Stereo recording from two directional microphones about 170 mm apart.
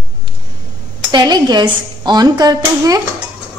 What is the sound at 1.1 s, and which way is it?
Speech, 25° right (ahead or behind).